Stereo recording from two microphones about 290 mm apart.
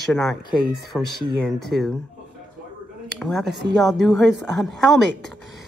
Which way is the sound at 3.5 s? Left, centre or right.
Right.